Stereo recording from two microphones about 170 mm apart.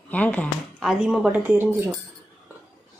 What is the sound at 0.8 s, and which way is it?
Speech, 5° right (ahead or behind).